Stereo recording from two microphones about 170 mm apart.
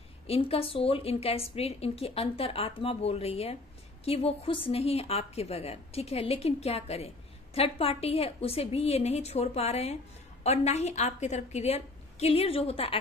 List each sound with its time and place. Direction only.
0.3 s speech: 35° left (ahead or behind)